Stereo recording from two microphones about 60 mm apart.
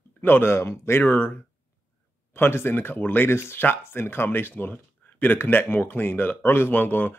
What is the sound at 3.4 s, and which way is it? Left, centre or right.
Speech, left.